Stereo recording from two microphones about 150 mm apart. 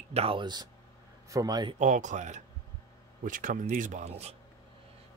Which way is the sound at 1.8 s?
55° right (ahead or behind).